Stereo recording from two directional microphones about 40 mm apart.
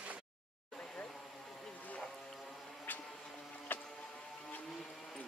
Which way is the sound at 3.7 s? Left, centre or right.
Left.